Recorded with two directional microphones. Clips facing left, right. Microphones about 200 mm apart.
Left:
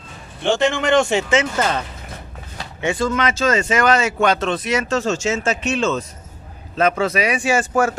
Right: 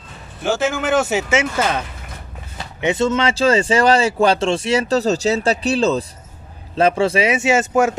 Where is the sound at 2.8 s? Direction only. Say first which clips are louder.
Right 3 dB; 20° right (ahead or behind).